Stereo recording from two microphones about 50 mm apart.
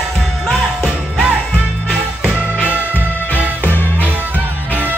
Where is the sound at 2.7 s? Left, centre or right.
Right.